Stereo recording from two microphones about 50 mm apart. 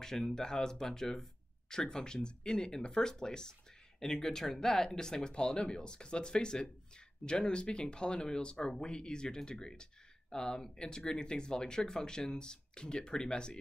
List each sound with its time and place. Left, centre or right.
0.0 s speech: centre